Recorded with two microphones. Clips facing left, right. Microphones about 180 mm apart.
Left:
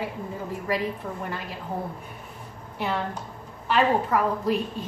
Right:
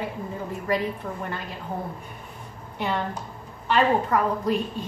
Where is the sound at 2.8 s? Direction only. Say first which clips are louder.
Right 1 dB; 5° left (ahead or behind).